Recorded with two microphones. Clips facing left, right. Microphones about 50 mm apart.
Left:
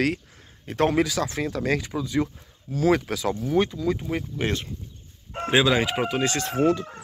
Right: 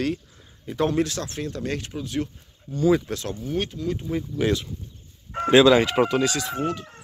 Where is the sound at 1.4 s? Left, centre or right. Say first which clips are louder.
Left 3 dB; left.